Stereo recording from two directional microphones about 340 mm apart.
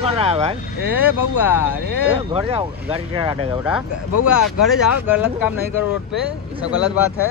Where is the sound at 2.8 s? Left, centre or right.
Centre.